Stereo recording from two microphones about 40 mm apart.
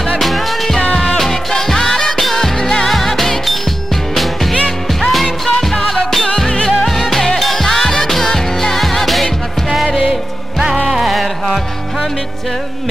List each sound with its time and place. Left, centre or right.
0.2 s music: centre
6.2 s music: left
6.8 s music: centre
10.9 s music: centre